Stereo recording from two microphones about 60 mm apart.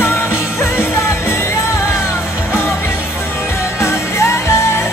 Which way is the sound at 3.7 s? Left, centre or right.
Left.